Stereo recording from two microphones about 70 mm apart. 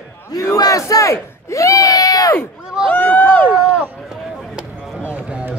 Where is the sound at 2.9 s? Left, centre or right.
Left.